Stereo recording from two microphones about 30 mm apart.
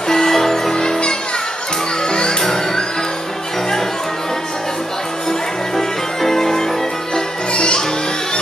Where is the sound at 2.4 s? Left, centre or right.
Centre.